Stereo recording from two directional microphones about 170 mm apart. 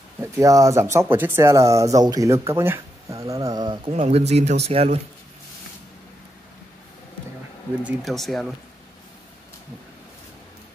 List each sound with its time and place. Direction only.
0.2 s speech: 20° right (ahead or behind); by 5.0 s 35° right (ahead or behind)
7.8 s speech: centre (ahead or behind)